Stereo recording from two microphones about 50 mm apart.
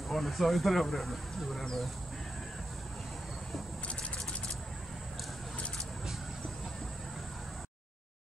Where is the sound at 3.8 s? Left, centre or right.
Left.